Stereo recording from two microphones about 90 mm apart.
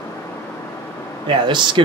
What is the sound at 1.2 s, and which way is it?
Speech, 60° right (ahead or behind).